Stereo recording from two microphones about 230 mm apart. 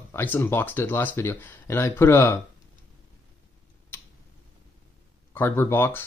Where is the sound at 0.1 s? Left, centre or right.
Centre.